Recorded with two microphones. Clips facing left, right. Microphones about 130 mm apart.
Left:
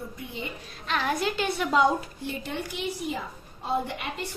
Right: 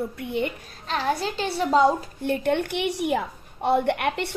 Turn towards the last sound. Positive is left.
turn(degrees=-70)  # may be behind; listen again after turning